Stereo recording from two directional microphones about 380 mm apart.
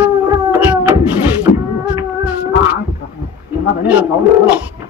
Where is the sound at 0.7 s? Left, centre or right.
Centre.